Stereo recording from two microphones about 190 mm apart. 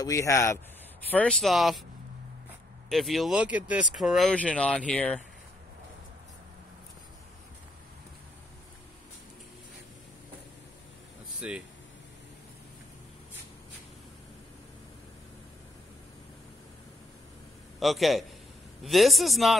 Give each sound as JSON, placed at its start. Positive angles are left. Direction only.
{"t": 0.0, "sound": "speech", "side_deg": 15}
{"t": 1.1, "sound": "speech", "side_deg": 5}
{"t": 2.9, "sound": "speech", "side_deg": 0}
{"t": 11.4, "sound": "speech", "side_deg": -5}
{"t": 17.7, "sound": "a man's voice", "side_deg": 0}